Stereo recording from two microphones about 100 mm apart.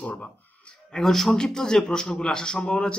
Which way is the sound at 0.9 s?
5° left (ahead or behind).